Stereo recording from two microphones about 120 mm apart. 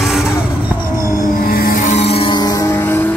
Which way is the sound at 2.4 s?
30° left (ahead or behind).